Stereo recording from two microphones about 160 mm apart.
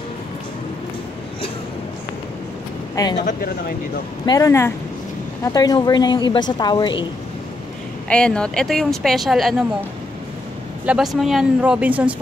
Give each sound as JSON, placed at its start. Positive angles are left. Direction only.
{"t": 3.0, "sound": "a woman's voice", "side_deg": 20}
{"t": 4.3, "sound": "a woman's voice", "side_deg": 20}
{"t": 8.1, "sound": "speech", "side_deg": 5}
{"t": 10.9, "sound": "speech", "side_deg": 0}